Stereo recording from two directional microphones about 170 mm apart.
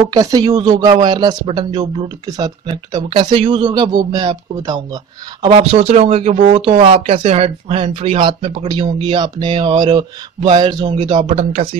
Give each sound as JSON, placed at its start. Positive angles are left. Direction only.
{"t": 0.1, "sound": "speech", "side_deg": -25}
{"t": 6.8, "sound": "speech", "side_deg": -35}
{"t": 11.3, "sound": "speech", "side_deg": -40}